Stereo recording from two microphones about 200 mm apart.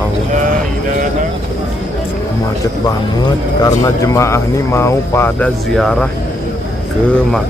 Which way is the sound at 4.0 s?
15° left (ahead or behind).